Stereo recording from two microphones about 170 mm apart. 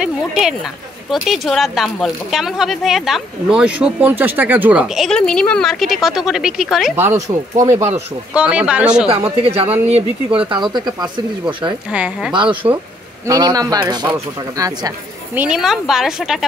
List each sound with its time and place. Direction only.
0.0 s speech: centre (ahead or behind)
7.5 s speech: 15° right (ahead or behind)
8.3 s speech: 5° right (ahead or behind)
9.1 s speech: 35° right (ahead or behind)
10.5 s speech: 25° right (ahead or behind)
11.9 s speech: 5° right (ahead or behind)
15.3 s speech: 5° right (ahead or behind)